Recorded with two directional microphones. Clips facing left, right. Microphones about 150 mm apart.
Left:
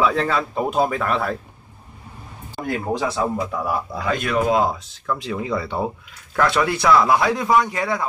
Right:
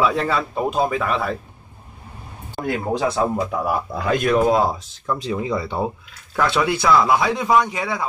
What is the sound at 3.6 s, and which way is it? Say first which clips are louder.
Speech: right 1 dB; 45° right (ahead or behind).